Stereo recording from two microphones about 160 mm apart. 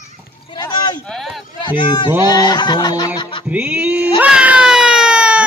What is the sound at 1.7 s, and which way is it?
Speech, 30° left (ahead or behind).